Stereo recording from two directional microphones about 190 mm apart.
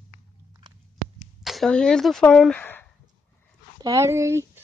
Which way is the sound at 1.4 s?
Centre (ahead or behind).